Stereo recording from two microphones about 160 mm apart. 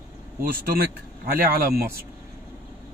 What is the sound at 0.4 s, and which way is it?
Speech, 65° right (ahead or behind).